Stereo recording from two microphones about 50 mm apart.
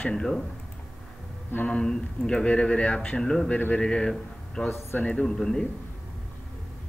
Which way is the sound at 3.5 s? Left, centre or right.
Left.